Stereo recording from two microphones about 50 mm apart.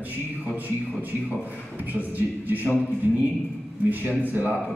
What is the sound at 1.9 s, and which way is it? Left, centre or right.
Speech, right.